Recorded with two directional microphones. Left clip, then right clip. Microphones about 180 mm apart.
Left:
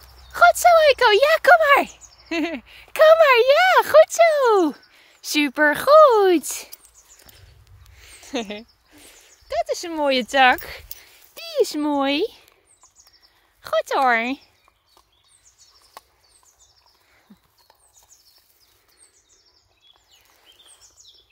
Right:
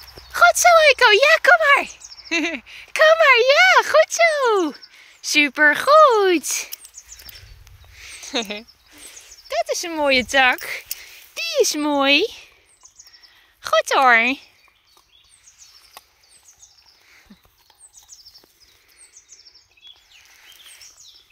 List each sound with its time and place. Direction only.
0.3 s speech: 15° left (ahead or behind)
7.9 s a sound: 20° left (ahead or behind)
13.6 s speech: 5° left (ahead or behind)